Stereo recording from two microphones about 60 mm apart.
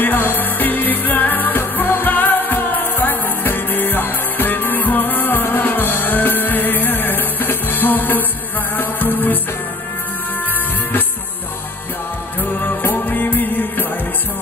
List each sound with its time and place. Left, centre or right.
0.0 s music: left
12.4 s music: left